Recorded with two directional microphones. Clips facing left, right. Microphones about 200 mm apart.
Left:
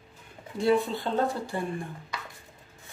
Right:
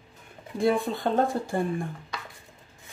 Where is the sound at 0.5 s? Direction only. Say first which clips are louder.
Even; 50° right (ahead or behind).